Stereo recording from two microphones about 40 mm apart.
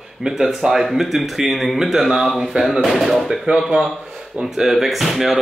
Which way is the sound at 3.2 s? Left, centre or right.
Centre.